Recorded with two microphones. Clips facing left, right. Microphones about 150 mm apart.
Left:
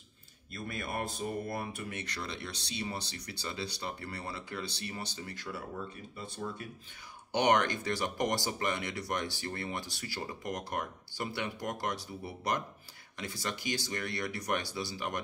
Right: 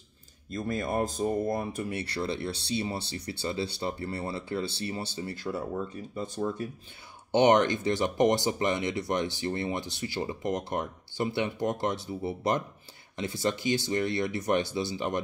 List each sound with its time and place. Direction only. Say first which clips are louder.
0.6 s speech: right 8 dB; 45° right (ahead or behind)
7.3 s speech: right 6 dB; 25° right (ahead or behind)